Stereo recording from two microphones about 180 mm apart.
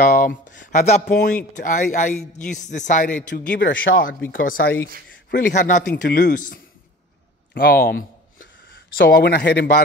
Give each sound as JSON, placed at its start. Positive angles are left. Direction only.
{"t": 0.0, "sound": "speech", "side_deg": 50}
{"t": 3.3, "sound": "speech", "side_deg": 80}
{"t": 4.3, "sound": "speech", "side_deg": 50}
{"t": 8.4, "sound": "speech", "side_deg": 90}